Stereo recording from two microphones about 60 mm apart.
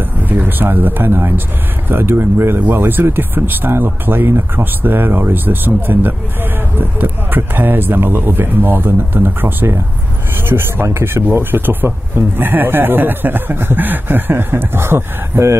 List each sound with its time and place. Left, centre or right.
0.3 s speech: right
10.9 s speech: right
11.3 s speech: right